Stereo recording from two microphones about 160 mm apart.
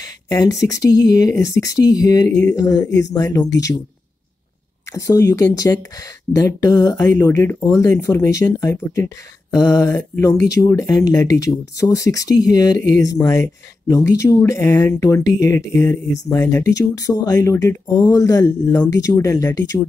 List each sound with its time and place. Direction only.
0.0 s speech: 20° left (ahead or behind)
4.9 s speech: 20° left (ahead or behind)